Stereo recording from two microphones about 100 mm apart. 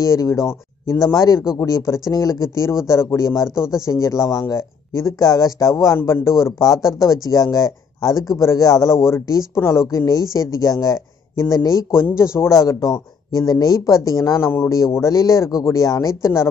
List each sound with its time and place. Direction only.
0.0 s speech: 30° left (ahead or behind)
11.9 s speech: 25° left (ahead or behind)